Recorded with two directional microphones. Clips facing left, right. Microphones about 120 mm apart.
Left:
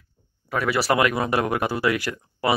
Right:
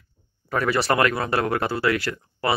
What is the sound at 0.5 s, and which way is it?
Speech, 5° left (ahead or behind).